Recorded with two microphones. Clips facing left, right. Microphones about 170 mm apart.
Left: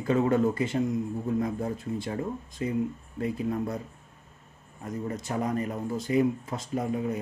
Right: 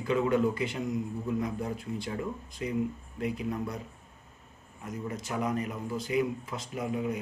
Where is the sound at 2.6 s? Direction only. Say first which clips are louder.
Left 3 dB; 35° left (ahead or behind).